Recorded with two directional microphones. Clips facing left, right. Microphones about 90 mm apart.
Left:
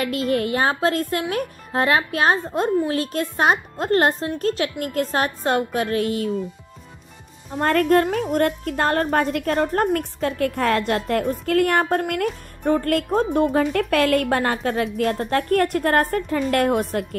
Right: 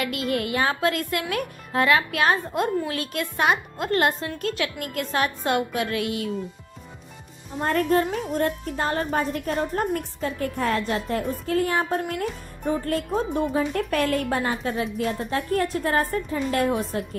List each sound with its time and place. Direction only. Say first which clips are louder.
0.0 s speech: left 4 dB; 35° left (ahead or behind)
7.6 s a woman's voice: left 4 dB; 70° left (ahead or behind)
11.8 s a woman's voice: left 4 dB; 55° left (ahead or behind)
13.6 s a woman's voice: left 4 dB; 85° left; by 17.0 s 60° left (ahead or behind)